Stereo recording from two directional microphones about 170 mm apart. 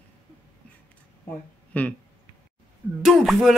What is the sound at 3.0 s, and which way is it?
Speech, centre (ahead or behind).